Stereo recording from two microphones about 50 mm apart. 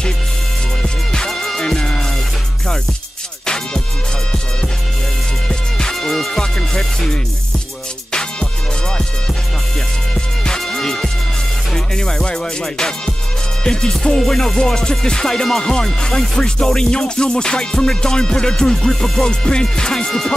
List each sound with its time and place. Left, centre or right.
0.8 s music: centre
3.4 s music: centre
5.5 s music: centre
10.1 s music: centre